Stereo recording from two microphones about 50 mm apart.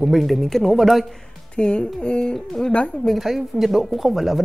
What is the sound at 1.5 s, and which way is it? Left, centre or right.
Speech, left.